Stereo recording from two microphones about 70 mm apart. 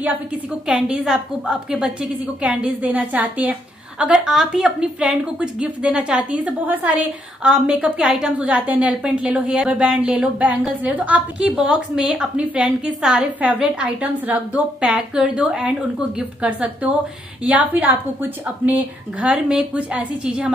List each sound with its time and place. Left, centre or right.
0.7 s speech: centre
4.0 s speech: centre
8.4 s a woman's voice: centre
14.9 s a woman's voice: centre; by 19.2 s right
19.2 s speech: centre
20.2 s speech: centre